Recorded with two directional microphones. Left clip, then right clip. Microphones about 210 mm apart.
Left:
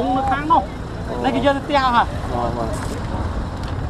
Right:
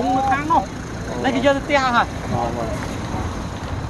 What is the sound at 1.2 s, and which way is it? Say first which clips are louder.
Speech: even; 20° right (ahead or behind).